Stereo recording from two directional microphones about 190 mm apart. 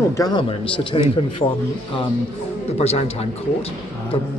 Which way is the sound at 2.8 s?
35° left (ahead or behind).